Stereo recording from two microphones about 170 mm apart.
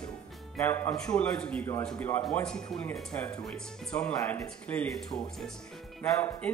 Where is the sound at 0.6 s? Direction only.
15° left (ahead or behind).